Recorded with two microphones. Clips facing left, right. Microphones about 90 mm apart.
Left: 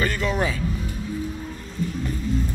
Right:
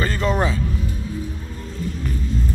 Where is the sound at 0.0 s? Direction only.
35° right (ahead or behind).